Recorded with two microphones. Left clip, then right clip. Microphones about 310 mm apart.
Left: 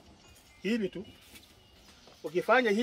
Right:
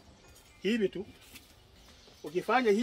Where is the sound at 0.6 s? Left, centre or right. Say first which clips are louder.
Right 2 dB; centre.